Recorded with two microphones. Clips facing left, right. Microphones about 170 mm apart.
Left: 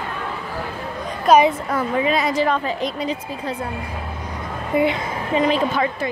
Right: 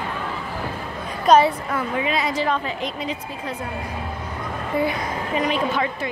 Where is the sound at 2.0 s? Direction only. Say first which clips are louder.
Left 5 dB; 45° left (ahead or behind).